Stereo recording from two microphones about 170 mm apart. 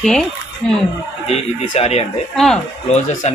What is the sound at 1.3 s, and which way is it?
Speech, 40° left (ahead or behind).